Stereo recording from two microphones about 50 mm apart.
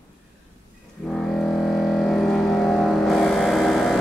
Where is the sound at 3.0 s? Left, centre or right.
Centre.